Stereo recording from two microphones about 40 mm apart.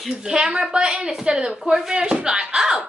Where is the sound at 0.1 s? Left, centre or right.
Centre.